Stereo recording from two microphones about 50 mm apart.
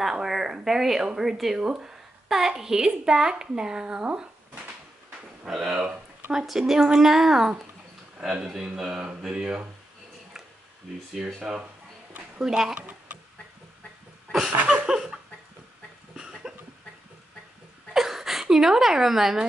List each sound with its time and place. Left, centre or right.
0.0 s a woman's voice: centre
5.5 s a woman's voice: centre
11.1 s a woman's voice: centre
14.7 s a sound: centre
16.2 s cough: centre
17.9 s hiccup: centre